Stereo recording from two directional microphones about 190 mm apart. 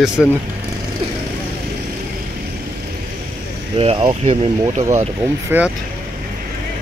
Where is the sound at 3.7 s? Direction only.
30° right (ahead or behind).